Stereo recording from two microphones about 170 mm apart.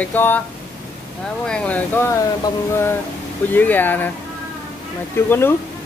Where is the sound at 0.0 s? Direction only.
10° left (ahead or behind).